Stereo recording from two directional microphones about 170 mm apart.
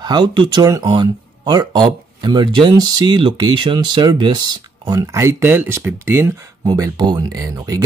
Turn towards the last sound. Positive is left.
turn(degrees=-20)  # may be behind; listen again after turning